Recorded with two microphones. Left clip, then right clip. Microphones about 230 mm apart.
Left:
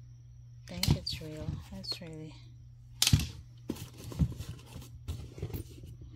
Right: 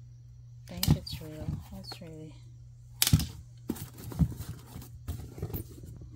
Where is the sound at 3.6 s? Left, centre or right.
Centre.